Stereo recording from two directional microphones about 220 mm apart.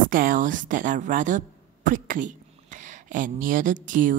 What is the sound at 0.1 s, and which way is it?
A woman's voice, 40° right (ahead or behind).